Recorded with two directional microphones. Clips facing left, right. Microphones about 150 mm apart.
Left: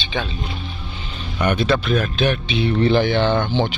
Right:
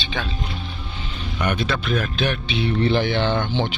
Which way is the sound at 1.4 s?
35° left (ahead or behind).